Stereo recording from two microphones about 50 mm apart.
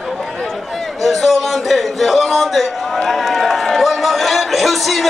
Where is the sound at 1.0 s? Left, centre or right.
Centre.